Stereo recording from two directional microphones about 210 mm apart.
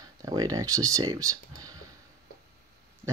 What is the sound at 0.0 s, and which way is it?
Speech, 15° right (ahead or behind).